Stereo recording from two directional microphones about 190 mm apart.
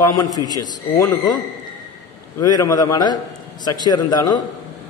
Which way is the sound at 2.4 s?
20° left (ahead or behind).